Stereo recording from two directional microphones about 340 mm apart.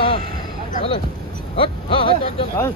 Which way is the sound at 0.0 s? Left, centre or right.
Centre.